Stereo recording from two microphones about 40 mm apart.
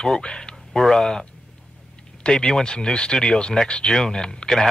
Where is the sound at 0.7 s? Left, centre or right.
Centre.